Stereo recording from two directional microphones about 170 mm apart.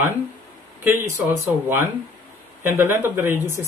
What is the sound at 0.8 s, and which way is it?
Speech, 15° right (ahead or behind).